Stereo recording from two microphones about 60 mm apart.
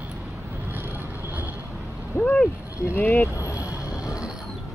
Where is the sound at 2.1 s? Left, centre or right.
Centre.